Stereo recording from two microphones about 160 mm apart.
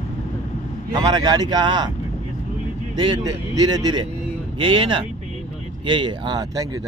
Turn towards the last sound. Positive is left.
turn(degrees=-25)  # may be behind; listen again after turning